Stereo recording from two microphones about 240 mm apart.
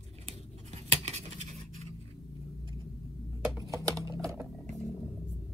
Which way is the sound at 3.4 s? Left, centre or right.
Centre.